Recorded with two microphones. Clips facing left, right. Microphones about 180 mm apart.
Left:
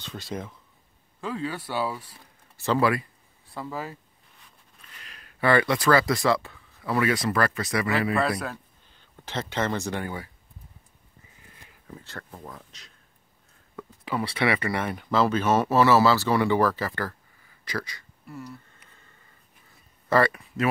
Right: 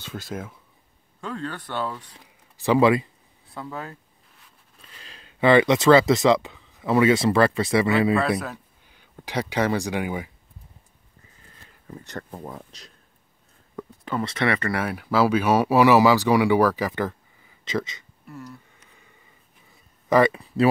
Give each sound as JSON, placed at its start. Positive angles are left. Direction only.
{"t": 0.0, "sound": "speech", "side_deg": 0}
{"t": 2.5, "sound": "speech", "side_deg": -15}
{"t": 3.4, "sound": "a sound", "side_deg": 0}
{"t": 4.9, "sound": "speech", "side_deg": -30}
{"t": 8.2, "sound": "speech", "side_deg": 0}
{"t": 12.0, "sound": "speech", "side_deg": -15}
{"t": 12.4, "sound": "speech", "side_deg": -30}
{"t": 14.0, "sound": "speech", "side_deg": 5}
{"t": 14.8, "sound": "speech", "side_deg": -5}
{"t": 18.2, "sound": "a sound", "side_deg": 0}
{"t": 20.1, "sound": "speech", "side_deg": -15}
{"t": 20.3, "sound": "speech", "side_deg": -30}